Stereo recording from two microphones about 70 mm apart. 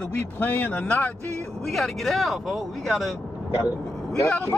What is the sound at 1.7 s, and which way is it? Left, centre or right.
Speech, centre.